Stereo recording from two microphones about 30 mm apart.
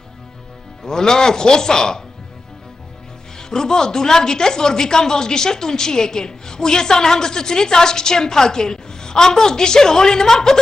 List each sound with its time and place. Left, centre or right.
0.8 s a woman's voice: left
3.3 s a woman's voice: left